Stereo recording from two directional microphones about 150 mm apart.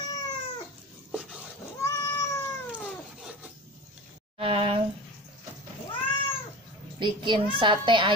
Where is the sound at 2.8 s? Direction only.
Centre (ahead or behind).